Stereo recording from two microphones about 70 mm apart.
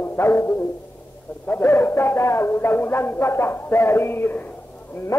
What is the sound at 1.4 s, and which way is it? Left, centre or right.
Speech, left.